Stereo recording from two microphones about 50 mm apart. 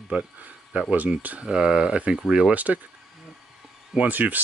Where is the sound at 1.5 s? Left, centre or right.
Centre; by 2.8 s right.